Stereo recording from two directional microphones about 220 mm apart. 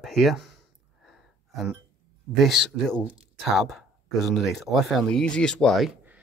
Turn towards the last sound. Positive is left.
turn(degrees=0)  # may be behind; listen again after turning